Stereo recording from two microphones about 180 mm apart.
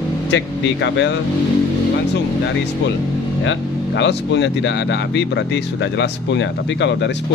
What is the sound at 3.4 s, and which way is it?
Speech, 80° left.